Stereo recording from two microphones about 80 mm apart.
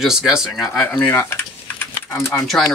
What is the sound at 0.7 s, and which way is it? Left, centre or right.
Speech, left.